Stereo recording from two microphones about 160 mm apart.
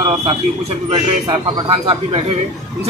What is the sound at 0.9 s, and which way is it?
Speech, 30° right (ahead or behind).